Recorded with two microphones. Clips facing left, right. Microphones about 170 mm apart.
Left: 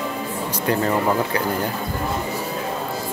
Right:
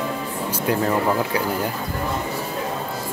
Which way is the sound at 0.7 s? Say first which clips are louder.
Even; 5° right (ahead or behind).